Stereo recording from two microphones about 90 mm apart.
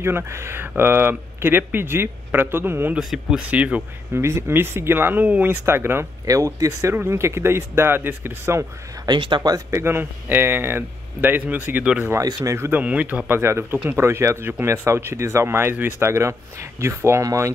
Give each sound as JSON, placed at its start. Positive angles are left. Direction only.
{"t": 0.0, "sound": "speech", "side_deg": -30}
{"t": 3.0, "sound": "speech", "side_deg": -5}
{"t": 3.4, "sound": "speech", "side_deg": -15}
{"t": 4.1, "sound": "speech", "side_deg": -30}
{"t": 6.2, "sound": "speech", "side_deg": -35}
{"t": 9.0, "sound": "speech", "side_deg": -60}
{"t": 9.7, "sound": "speech", "side_deg": -30}
{"t": 12.4, "sound": "speech", "side_deg": -30}
{"t": 12.8, "sound": "speech", "side_deg": -15}